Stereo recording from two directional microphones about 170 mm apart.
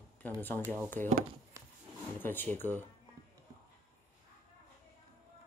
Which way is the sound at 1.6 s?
20° right (ahead or behind).